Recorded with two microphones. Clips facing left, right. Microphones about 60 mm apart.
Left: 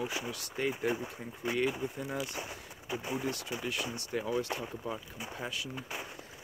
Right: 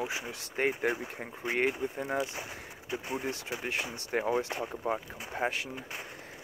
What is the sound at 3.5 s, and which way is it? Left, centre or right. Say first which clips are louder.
Speech: right 1 dB; right.